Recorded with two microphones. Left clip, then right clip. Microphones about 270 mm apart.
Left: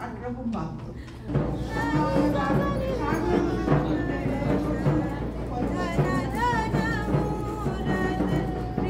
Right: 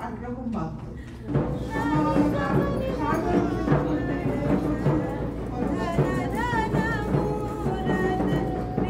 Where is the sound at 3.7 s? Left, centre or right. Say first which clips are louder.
Right 1 dB; centre.